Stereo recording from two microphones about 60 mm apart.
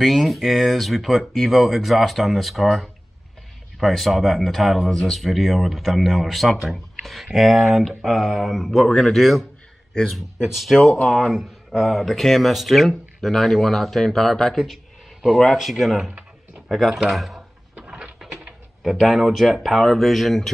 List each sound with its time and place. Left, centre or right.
0.0 s speech: centre
17.7 s a sound: centre
18.8 s speech: centre